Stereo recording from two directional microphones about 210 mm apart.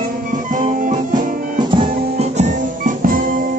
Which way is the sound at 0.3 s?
40° right (ahead or behind).